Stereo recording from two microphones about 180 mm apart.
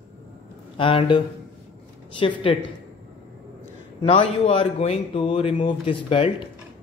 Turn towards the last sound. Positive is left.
turn(degrees=30)  # may be behind; listen again after turning